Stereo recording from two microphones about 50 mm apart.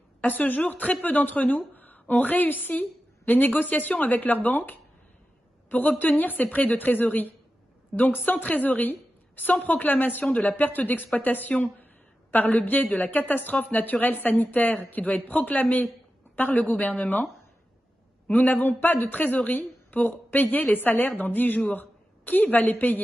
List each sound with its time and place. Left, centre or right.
0.2 s a woman's voice: left
10.2 s speech: left
10.5 s a woman's voice: left